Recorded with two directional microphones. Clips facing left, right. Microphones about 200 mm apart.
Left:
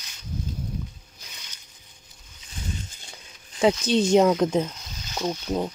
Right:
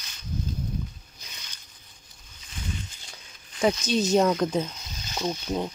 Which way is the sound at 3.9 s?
30° left (ahead or behind).